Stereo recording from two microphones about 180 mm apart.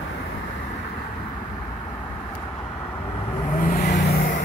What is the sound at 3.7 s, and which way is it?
Vehicle, 50° left (ahead or behind).